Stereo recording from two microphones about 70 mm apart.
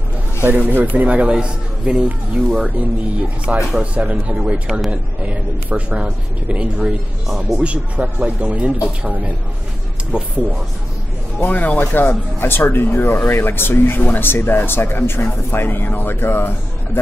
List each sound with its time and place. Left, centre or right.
0.4 s a man's voice: right
4.4 s a man's voice: centre
5.2 s a man's voice: centre
11.3 s speech: left